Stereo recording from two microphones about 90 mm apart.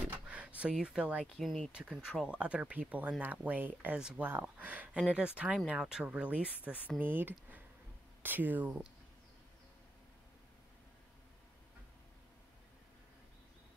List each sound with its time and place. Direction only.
0.1 s a sound: 15° right (ahead or behind)
0.6 s speech: 10° right (ahead or behind)
1.2 s speech: centre (ahead or behind); by 8.8 s 20° right (ahead or behind)